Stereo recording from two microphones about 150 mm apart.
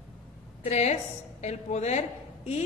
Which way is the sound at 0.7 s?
50° left (ahead or behind).